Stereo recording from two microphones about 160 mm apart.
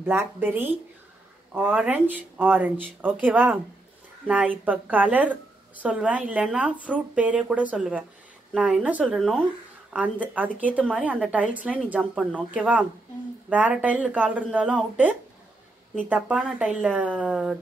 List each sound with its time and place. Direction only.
0.0 s a woman's voice: 15° right (ahead or behind)
4.6 s a woman's voice: 10° right (ahead or behind)